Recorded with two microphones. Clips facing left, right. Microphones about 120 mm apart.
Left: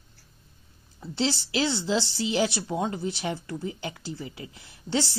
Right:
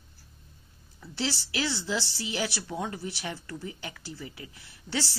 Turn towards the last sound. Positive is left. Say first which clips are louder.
# left 5 dB
turn(degrees=20)  # may be behind; listen again after turning